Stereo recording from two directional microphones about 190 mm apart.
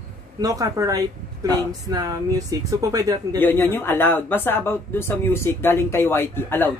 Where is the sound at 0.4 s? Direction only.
20° right (ahead or behind).